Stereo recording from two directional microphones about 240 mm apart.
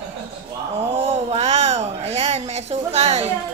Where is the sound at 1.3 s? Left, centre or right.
Right.